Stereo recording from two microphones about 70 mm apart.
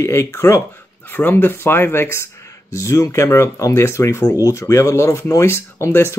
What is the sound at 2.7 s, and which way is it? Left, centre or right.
Speech, left.